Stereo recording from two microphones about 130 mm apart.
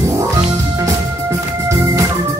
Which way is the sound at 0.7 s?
25° right (ahead or behind).